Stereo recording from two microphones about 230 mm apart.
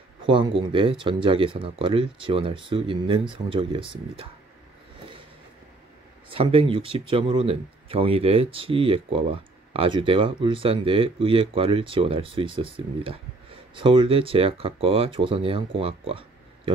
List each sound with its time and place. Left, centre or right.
0.2 s speech: right
6.3 s speech: right